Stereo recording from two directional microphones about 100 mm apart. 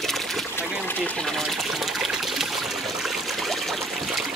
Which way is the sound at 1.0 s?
5° left (ahead or behind).